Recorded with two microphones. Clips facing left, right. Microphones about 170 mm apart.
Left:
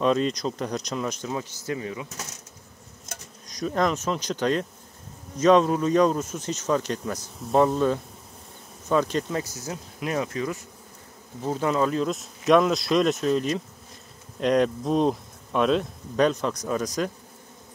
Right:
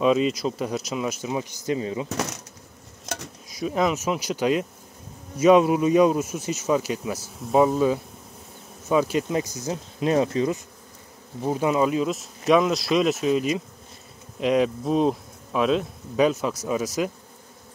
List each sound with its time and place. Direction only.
0.0 s speech: 5° right (ahead or behind); by 2.0 s 25° right (ahead or behind)
2.0 s speech: 80° right
3.1 s insect: 85° right
3.4 s speech: 5° right (ahead or behind); by 10.6 s 25° right (ahead or behind)
11.4 s speech: 15° right (ahead or behind)